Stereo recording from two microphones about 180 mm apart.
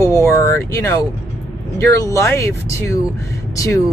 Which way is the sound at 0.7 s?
15° left (ahead or behind).